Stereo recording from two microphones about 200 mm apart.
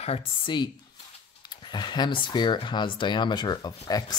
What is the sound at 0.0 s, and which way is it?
Speech, 25° left (ahead or behind).